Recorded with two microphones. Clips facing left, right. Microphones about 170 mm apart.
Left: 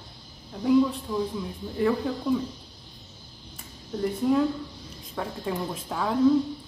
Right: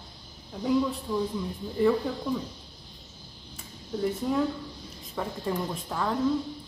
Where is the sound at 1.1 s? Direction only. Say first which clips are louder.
Even; 5° left (ahead or behind).